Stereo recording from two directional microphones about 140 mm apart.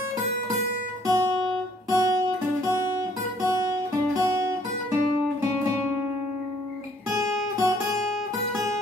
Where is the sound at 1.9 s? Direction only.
25° right (ahead or behind).